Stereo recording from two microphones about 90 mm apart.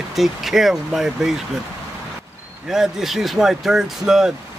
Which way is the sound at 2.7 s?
5° right (ahead or behind).